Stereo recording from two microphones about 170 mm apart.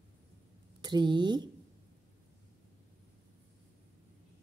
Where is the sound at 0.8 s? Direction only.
25° right (ahead or behind).